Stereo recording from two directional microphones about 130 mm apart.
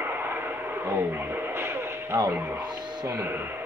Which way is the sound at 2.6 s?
35° right (ahead or behind).